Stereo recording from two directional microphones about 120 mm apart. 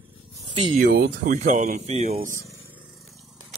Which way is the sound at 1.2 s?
90° right.